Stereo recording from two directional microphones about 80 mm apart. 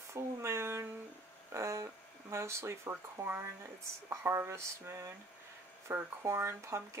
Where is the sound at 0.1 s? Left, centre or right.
Right.